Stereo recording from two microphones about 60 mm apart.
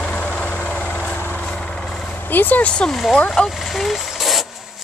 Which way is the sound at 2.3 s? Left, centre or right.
Left.